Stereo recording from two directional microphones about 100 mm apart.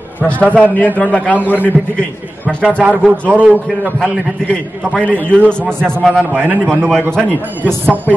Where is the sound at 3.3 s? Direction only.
15° right (ahead or behind).